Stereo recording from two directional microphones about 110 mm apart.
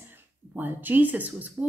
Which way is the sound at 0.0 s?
15° right (ahead or behind).